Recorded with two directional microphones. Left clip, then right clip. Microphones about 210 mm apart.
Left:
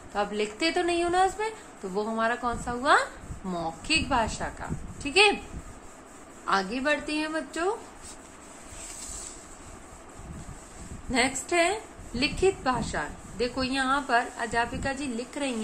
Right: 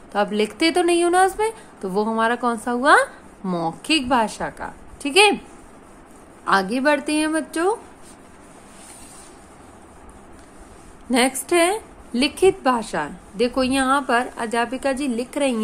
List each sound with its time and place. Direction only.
0.1 s a woman's voice: 55° right (ahead or behind)
6.4 s a woman's voice: 55° right (ahead or behind)
11.1 s a woman's voice: 55° right (ahead or behind)